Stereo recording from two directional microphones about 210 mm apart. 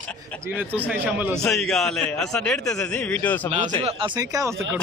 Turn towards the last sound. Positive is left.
turn(degrees=-15)  # may be behind; listen again after turning